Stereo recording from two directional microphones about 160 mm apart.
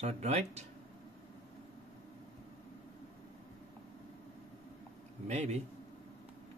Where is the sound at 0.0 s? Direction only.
45° right (ahead or behind).